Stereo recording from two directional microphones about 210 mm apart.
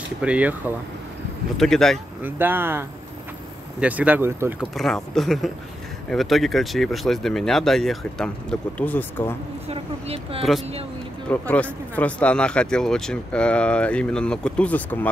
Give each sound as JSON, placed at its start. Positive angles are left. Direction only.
{"t": 0.2, "sound": "speech", "side_deg": -5}
{"t": 2.2, "sound": "speech", "side_deg": -10}
{"t": 3.8, "sound": "speech", "side_deg": -5}
{"t": 4.7, "sound": "speech", "side_deg": 0}
{"t": 9.7, "sound": "speech", "side_deg": -30}
{"t": 11.2, "sound": "speech", "side_deg": 5}